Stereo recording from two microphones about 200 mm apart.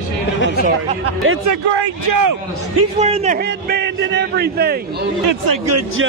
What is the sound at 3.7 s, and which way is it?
A man's voice, 55° right (ahead or behind).